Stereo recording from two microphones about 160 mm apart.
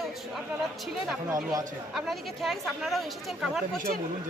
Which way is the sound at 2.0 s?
Centre (ahead or behind).